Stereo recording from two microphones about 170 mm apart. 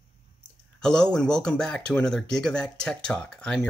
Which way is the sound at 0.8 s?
5° left (ahead or behind).